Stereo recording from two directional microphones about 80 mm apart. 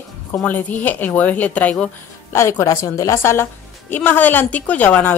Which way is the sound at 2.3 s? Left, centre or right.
Left.